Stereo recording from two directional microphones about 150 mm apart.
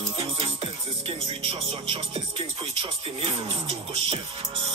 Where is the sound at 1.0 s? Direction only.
40° right (ahead or behind).